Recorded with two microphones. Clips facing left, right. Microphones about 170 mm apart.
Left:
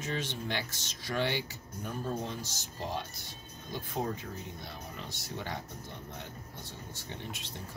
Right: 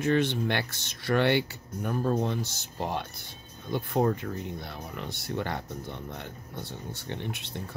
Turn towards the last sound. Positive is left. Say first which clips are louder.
# right 6 dB
turn(degrees=-65)  # may be behind; listen again after turning